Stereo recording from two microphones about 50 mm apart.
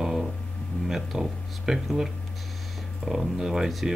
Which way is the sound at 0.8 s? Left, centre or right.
Centre.